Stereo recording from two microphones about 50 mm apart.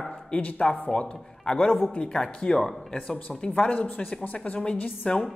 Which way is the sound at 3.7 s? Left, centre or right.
Left.